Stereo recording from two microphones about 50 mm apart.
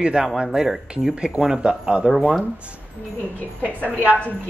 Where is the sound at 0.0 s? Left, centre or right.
Centre.